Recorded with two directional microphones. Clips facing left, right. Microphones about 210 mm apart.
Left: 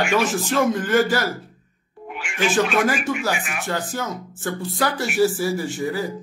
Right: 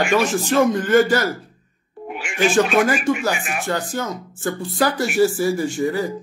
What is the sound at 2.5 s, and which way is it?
Speech, centre (ahead or behind).